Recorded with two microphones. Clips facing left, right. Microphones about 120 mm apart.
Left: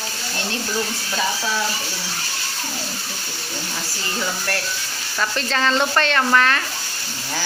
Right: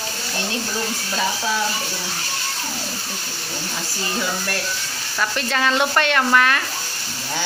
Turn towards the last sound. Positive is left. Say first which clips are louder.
# even
turn(degrees=-5)  # may be behind; listen again after turning